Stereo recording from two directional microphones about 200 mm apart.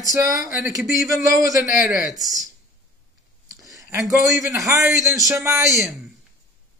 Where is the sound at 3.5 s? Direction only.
15° right (ahead or behind).